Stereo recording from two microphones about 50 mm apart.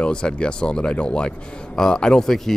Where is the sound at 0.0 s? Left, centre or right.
Centre.